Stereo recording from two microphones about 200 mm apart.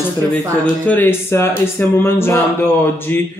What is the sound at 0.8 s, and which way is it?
Speech, 10° left (ahead or behind).